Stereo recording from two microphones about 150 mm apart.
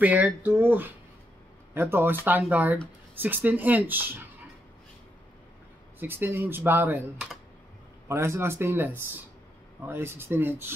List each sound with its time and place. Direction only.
0.0 s speech: 10° right (ahead or behind)
5.9 s speech: 15° right (ahead or behind)
8.1 s speech: 15° right (ahead or behind)